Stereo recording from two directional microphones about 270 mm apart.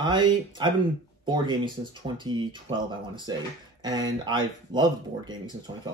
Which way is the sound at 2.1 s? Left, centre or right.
Centre.